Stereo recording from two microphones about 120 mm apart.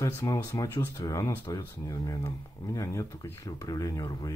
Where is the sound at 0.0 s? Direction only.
25° left (ahead or behind).